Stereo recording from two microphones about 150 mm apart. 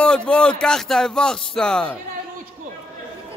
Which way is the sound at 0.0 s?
5° left (ahead or behind).